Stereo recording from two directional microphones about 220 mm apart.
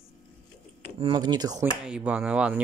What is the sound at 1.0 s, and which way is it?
Speech, 20° right (ahead or behind).